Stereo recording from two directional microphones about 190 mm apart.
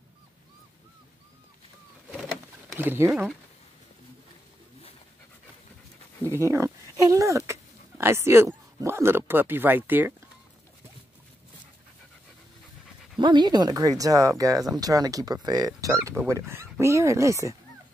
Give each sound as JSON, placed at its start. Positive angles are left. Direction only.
{"t": 2.0, "sound": "bird", "side_deg": 0}
{"t": 2.8, "sound": "speech", "side_deg": -10}
{"t": 6.4, "sound": "speech", "side_deg": -15}
{"t": 13.2, "sound": "speech", "side_deg": -25}